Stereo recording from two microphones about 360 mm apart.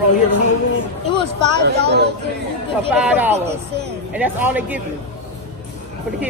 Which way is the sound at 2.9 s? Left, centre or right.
Centre.